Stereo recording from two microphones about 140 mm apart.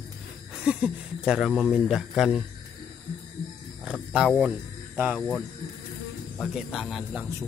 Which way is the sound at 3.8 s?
5° right (ahead or behind).